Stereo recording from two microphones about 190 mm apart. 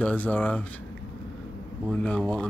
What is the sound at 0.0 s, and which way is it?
Speech, 10° left (ahead or behind).